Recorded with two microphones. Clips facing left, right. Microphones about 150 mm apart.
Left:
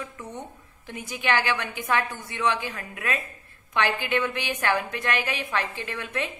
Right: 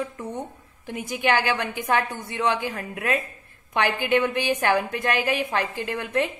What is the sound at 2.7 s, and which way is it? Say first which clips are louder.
Speech: right 5 dB; 30° right (ahead or behind).